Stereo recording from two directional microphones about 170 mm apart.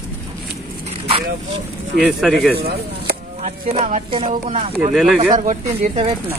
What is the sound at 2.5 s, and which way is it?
Speech, 70° right (ahead or behind).